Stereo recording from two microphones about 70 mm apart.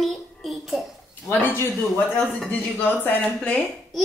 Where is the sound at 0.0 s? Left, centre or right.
Centre.